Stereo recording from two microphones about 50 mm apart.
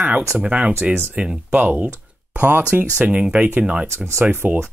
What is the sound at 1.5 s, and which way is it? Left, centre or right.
Speech, right.